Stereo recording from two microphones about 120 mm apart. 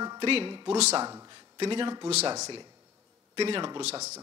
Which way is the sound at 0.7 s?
65° right (ahead or behind).